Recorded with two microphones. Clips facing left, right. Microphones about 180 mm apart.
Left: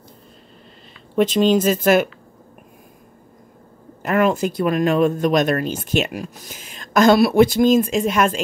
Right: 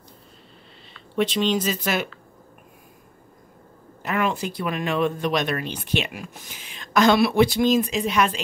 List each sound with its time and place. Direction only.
1.1 s speech: 45° left (ahead or behind)
4.0 s speech: 45° left (ahead or behind)